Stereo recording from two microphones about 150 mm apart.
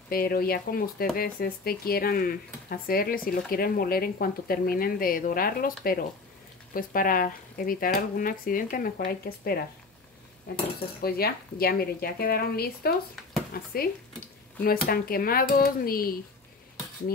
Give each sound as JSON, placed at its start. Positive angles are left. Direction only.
{"t": 0.1, "sound": "speech", "side_deg": 85}
{"t": 11.0, "sound": "a woman's voice", "side_deg": 90}
{"t": 14.6, "sound": "speech", "side_deg": 80}